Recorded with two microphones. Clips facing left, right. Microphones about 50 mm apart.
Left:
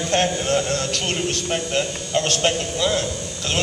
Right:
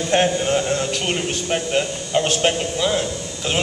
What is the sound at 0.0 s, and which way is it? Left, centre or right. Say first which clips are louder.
A man's voice: right 3 dB; centre.